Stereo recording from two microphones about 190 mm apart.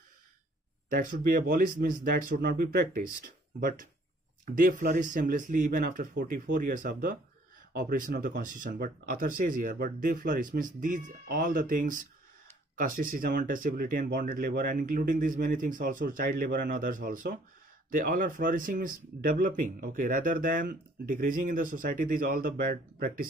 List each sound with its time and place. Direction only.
0.8 s speech: 45° right (ahead or behind)